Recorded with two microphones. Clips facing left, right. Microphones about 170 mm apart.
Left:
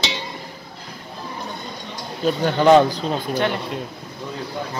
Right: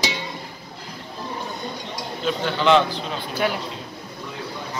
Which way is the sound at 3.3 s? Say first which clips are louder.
Left 1 dB; 5° right (ahead or behind).